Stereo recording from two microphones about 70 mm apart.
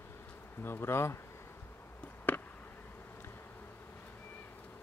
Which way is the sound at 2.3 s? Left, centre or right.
Left.